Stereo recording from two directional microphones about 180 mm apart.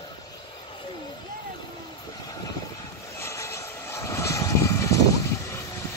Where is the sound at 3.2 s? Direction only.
15° left (ahead or behind).